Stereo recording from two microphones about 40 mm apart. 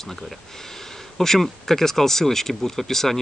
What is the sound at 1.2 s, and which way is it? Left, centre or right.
Speech, centre.